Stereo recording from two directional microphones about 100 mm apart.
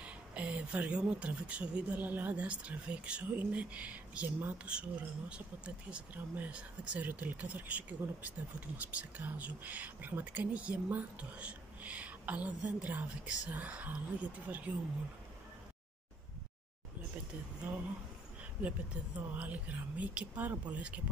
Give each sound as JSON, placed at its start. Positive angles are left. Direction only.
{"t": 0.0, "sound": "speech", "side_deg": -10}
{"t": 17.6, "sound": "speech", "side_deg": -20}